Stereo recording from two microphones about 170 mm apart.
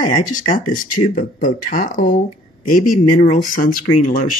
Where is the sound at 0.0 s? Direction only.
25° left (ahead or behind).